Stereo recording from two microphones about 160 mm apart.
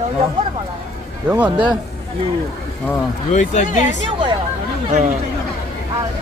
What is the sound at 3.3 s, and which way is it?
Speech, 50° left (ahead or behind).